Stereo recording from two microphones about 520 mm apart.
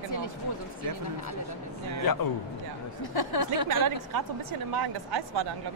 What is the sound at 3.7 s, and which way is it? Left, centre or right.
A woman's voice, right.